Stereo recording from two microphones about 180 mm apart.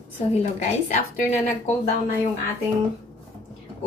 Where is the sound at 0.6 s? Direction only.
40° left (ahead or behind).